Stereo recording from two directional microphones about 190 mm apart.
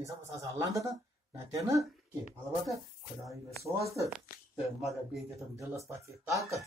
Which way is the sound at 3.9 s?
Centre (ahead or behind).